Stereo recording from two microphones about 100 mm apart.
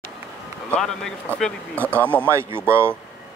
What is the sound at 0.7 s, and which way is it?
Speech, 5° left (ahead or behind).